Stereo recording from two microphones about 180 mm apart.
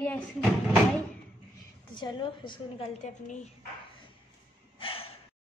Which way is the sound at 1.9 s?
25° left (ahead or behind).